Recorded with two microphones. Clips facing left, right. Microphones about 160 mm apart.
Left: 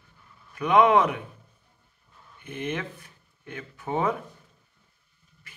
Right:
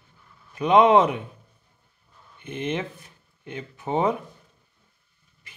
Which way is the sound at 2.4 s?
20° right (ahead or behind).